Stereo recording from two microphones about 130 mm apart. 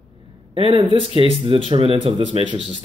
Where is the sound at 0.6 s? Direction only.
40° right (ahead or behind).